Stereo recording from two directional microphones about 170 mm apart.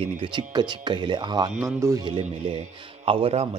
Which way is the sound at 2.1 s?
40° right (ahead or behind).